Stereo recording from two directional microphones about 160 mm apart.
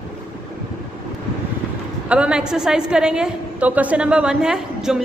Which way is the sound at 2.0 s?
5° right (ahead or behind).